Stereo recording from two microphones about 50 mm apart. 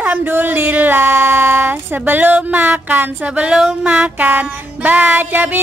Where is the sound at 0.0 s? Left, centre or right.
Right.